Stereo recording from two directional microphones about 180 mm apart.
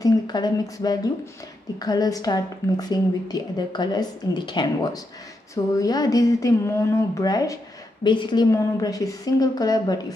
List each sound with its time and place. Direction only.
0.0 s a woman's voice: 25° left (ahead or behind)